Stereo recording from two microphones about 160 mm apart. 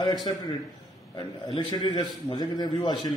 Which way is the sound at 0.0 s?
25° left (ahead or behind).